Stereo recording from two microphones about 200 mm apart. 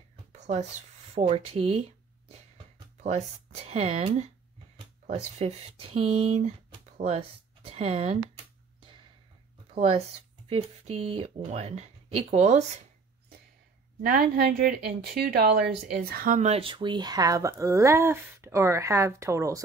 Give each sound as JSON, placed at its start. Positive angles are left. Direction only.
{"t": 0.4, "sound": "a sound", "side_deg": -35}
{"t": 4.7, "sound": "speech", "side_deg": -35}
{"t": 9.8, "sound": "speech", "side_deg": -30}
{"t": 14.0, "sound": "a woman's voice", "side_deg": -50}